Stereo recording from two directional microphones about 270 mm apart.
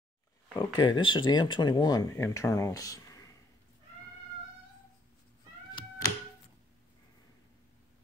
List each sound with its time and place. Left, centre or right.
0.6 s speech: centre